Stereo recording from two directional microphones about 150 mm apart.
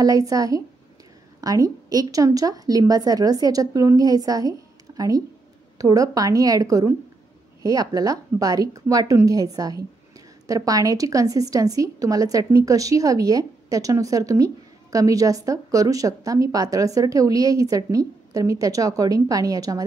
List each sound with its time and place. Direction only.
0.0 s a woman's voice: 25° right (ahead or behind)